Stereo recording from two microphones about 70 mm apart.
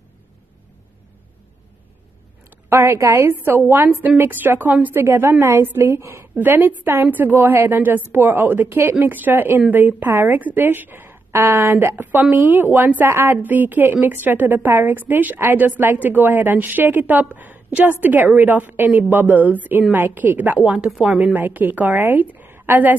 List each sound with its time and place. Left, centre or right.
2.7 s a woman's voice: right
6.3 s a woman's voice: right